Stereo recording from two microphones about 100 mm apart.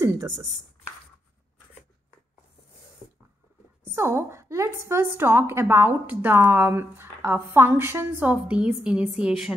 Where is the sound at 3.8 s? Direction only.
25° right (ahead or behind).